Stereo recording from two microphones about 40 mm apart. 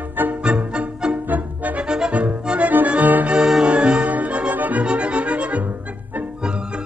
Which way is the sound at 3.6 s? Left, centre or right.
Right.